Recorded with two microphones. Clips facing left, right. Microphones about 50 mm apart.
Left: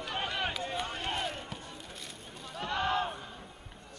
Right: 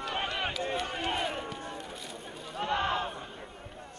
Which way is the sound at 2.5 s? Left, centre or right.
Centre.